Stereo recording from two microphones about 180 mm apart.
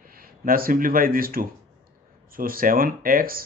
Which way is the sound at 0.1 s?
55° right (ahead or behind).